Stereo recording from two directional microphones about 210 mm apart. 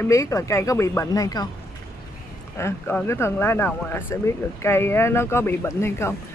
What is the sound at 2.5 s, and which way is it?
Speech, 10° left (ahead or behind).